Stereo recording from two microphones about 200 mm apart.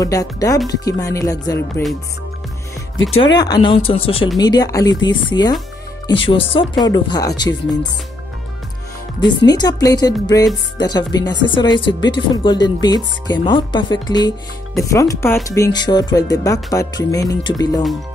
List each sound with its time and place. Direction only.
0.0 s speech: 15° left (ahead or behind)
3.3 s speech: 20° left (ahead or behind)
9.4 s speech: 20° left (ahead or behind)